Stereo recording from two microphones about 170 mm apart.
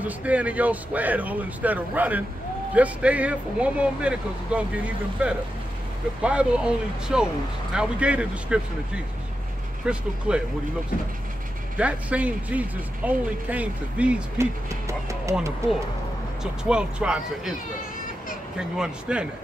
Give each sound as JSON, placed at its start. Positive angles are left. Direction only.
{"t": 0.0, "sound": "speech", "side_deg": -10}
{"t": 11.8, "sound": "speech", "side_deg": -10}
{"t": 14.7, "sound": "speech", "side_deg": -15}
{"t": 16.6, "sound": "speech", "side_deg": -5}
{"t": 18.6, "sound": "speech", "side_deg": -5}